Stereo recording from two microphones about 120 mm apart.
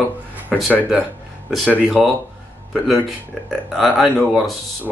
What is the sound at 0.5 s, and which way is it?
Speech, centre (ahead or behind).